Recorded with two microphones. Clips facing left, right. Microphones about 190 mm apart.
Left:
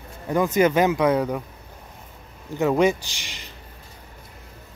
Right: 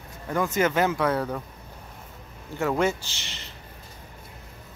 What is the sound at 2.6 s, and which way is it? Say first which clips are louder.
Speech: left 5 dB; 15° left (ahead or behind).